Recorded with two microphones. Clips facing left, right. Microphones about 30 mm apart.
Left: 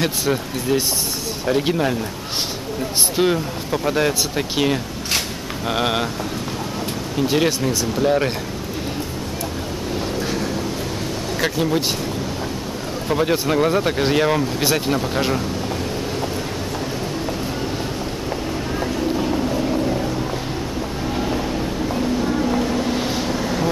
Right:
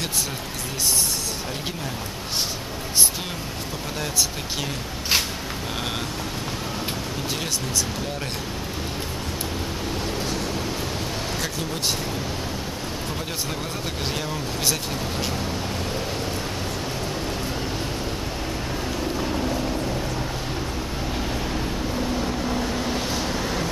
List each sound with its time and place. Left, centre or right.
0.0 s speech: left
3.2 s speech: left
8.0 s speech: left
13.1 s speech: left
14.1 s speech: left
14.6 s speech: left
18.9 s vehicle: centre
21.2 s vehicle: centre
23.2 s vehicle: centre